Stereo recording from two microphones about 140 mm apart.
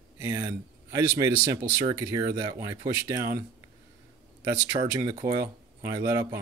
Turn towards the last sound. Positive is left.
turn(degrees=-25)  # may be behind; listen again after turning